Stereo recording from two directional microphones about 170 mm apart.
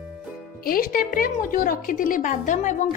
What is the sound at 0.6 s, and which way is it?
A woman's voice, 60° left (ahead or behind).